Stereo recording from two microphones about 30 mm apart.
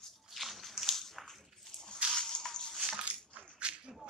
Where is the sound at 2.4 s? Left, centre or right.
Centre.